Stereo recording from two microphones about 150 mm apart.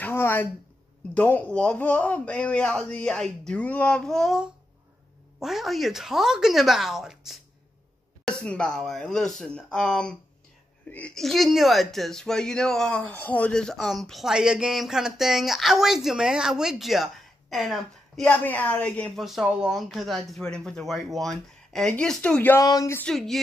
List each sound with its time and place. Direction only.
0.0 s a sound: 15° left (ahead or behind)
1.1 s speech: 10° left (ahead or behind)
19.2 s speech: 5° right (ahead or behind)
22.6 s speech: 25° left (ahead or behind)
22.9 s speech: 5° left (ahead or behind)